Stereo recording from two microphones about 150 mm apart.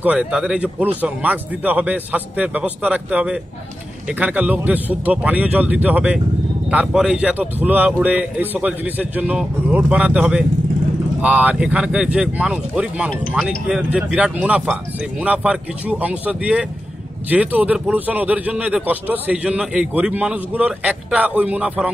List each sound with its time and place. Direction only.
0.0 s a man's voice: 10° right (ahead or behind)